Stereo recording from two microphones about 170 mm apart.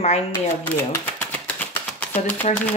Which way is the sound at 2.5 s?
40° left (ahead or behind).